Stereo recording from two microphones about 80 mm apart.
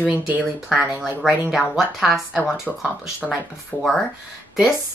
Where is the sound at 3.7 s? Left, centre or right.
Centre.